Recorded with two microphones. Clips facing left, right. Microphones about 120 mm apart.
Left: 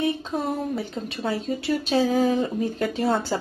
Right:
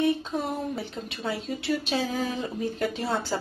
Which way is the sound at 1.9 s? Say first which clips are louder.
Left 8 dB; 45° left (ahead or behind).